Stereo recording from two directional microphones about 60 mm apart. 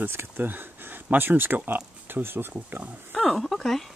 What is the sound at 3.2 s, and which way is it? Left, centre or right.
Speech, centre.